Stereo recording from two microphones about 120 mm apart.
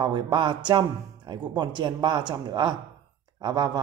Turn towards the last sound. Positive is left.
turn(degrees=-40)  # may be behind; listen again after turning